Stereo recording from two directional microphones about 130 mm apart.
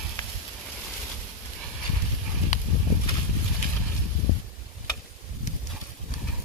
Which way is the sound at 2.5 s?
70° left (ahead or behind).